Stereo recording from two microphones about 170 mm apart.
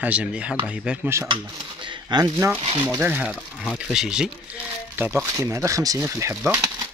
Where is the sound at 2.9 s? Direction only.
10° right (ahead or behind).